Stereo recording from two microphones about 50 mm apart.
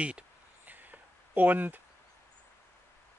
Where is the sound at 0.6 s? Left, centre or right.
Right.